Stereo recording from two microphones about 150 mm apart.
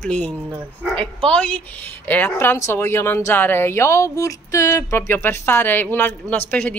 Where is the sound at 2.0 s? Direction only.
10° left (ahead or behind).